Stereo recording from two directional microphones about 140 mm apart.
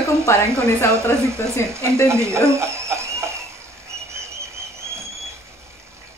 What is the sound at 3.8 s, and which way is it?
Train, 20° right (ahead or behind).